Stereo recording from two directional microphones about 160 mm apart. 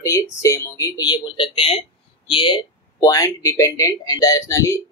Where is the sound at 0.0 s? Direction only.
20° left (ahead or behind).